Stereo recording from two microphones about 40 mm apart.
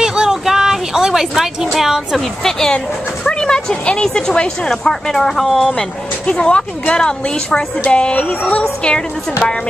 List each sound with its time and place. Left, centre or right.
0.0 s a sound: centre
1.8 s speech: centre
3.3 s a woman's voice: left; by 5.7 s centre
6.2 s a woman's voice: left